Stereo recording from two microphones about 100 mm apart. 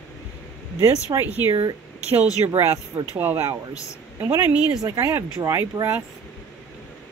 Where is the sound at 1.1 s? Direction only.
40° right (ahead or behind).